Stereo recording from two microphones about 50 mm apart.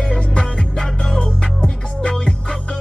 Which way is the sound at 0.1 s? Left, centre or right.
Centre.